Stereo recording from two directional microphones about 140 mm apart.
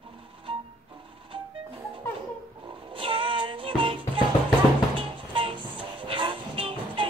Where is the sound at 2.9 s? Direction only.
40° right (ahead or behind).